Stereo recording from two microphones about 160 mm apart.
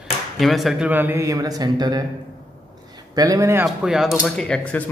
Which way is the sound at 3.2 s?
20° right (ahead or behind).